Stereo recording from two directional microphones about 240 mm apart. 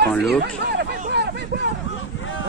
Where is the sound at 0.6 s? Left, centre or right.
Right.